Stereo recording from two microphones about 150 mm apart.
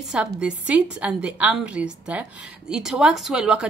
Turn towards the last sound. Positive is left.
turn(degrees=-5)  # may be behind; listen again after turning